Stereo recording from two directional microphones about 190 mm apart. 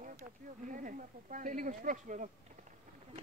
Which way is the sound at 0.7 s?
45° right (ahead or behind).